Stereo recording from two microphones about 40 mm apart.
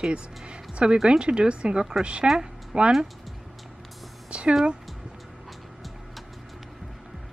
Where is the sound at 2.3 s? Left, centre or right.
Right.